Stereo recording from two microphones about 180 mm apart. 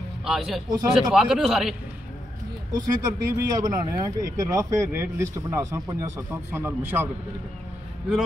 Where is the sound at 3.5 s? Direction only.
20° right (ahead or behind).